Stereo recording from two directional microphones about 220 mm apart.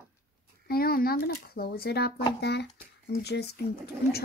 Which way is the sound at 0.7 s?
45° left (ahead or behind).